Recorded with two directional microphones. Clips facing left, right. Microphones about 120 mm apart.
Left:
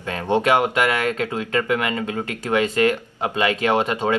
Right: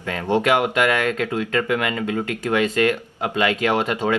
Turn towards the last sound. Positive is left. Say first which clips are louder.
# left 1 dB
turn(degrees=25)  # may be behind; listen again after turning